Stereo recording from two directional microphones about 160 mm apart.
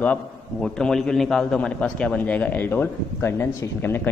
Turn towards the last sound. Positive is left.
turn(degrees=15)  # may be behind; listen again after turning